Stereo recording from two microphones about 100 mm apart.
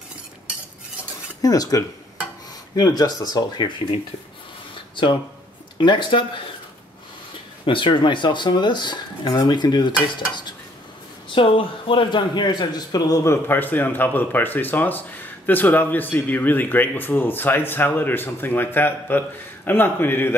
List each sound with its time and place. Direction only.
1.4 s speech: 35° left (ahead or behind)
5.8 s speech: 50° left (ahead or behind)
7.6 s speech: 55° left (ahead or behind)
11.3 s a man's voice: 60° left (ahead or behind); by 20.3 s 20° left (ahead or behind)